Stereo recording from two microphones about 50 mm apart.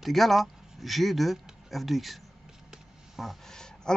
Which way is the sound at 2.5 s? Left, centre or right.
Centre.